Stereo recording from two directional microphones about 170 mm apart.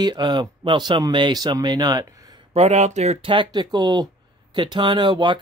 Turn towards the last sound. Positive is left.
turn(degrees=-30)  # may be behind; listen again after turning